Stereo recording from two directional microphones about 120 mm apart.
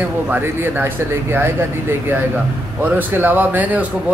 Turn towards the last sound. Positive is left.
turn(degrees=-10)  # may be behind; listen again after turning